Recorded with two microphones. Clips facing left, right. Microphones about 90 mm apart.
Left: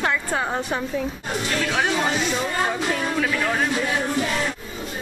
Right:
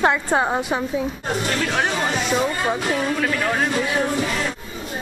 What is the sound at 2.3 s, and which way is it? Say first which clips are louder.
Speech: right 2 dB; 35° right (ahead or behind).